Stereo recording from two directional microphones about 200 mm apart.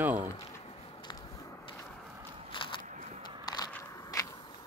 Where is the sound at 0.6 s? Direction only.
30° left (ahead or behind).